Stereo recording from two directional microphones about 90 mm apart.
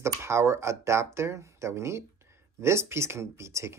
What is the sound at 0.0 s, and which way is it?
Speech, 30° right (ahead or behind).